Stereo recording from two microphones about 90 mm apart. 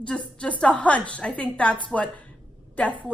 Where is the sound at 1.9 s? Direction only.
15° left (ahead or behind).